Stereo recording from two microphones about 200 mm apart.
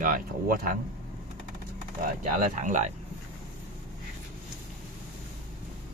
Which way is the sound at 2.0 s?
40° right (ahead or behind).